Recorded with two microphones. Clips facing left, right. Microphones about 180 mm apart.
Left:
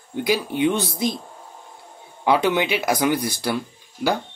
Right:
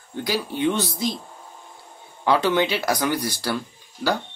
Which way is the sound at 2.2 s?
20° left (ahead or behind).